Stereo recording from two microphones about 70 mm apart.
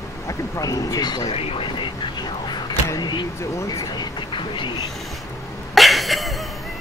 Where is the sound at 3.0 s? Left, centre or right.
Left.